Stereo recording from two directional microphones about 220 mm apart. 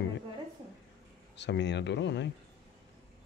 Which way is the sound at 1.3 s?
50° left (ahead or behind).